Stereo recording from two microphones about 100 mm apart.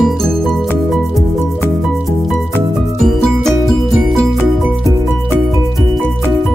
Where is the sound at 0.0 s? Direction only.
Centre (ahead or behind).